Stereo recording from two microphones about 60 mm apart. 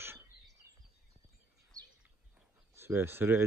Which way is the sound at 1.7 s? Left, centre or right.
Right.